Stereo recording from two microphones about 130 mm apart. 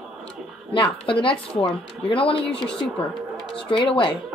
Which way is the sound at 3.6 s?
40° left (ahead or behind).